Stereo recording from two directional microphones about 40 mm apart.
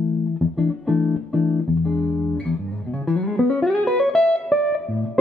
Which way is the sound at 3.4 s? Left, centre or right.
Left.